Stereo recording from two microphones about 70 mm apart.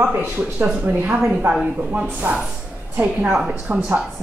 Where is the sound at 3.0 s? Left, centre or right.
Right.